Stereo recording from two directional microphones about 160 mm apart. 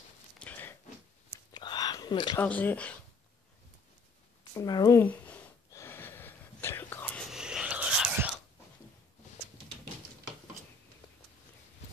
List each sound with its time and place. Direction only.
0.4 s a sound: 10° left (ahead or behind)
1.5 s whispering: 25° left (ahead or behind)
2.3 s speech: 10° left (ahead or behind)
4.6 s speech: 25° left (ahead or behind)
5.0 s a sound: 10° left (ahead or behind)
5.7 s whispering: 15° left (ahead or behind)
7.2 s whispering: 5° right (ahead or behind)